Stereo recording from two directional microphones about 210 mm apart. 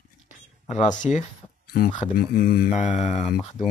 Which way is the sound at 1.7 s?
45° left (ahead or behind).